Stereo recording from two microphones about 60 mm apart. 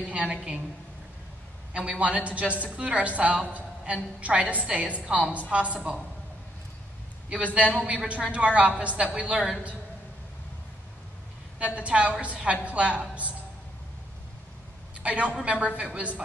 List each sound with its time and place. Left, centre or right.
0.0 s a woman's voice: centre
1.7 s a woman's voice: right
7.5 s a woman's voice: right
11.6 s a woman's voice: right
15.0 s a woman's voice: right